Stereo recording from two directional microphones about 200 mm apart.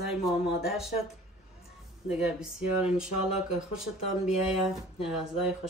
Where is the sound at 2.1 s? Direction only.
5° right (ahead or behind).